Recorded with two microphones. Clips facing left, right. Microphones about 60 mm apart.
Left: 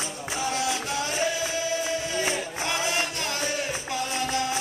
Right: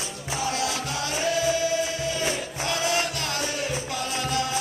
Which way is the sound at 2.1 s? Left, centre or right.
Left.